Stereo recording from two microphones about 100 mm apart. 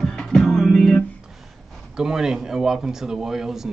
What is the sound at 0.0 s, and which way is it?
Music, 5° left (ahead or behind).